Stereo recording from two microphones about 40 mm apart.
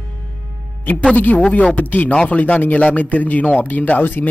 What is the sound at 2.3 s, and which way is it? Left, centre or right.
Speech, left.